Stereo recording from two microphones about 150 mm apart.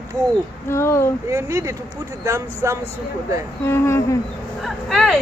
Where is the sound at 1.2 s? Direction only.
20° right (ahead or behind).